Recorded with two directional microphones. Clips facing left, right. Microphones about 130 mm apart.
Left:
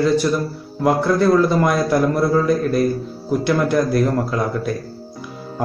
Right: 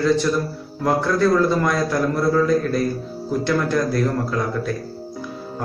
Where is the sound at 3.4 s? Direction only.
15° left (ahead or behind).